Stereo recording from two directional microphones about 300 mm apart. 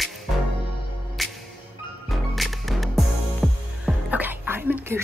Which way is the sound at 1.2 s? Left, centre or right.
Centre.